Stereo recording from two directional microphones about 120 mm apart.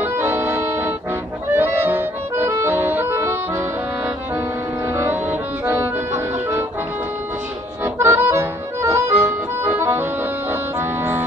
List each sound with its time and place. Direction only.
0.0 s accordion: 20° right (ahead or behind)
4.9 s music: 20° right (ahead or behind)
7.8 s music: 20° right (ahead or behind)
10.5 s accordion: 20° right (ahead or behind)